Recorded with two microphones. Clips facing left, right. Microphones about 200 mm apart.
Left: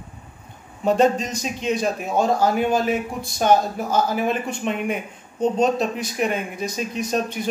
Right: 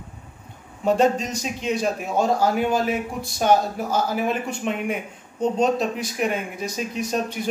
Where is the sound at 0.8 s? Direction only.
5° right (ahead or behind).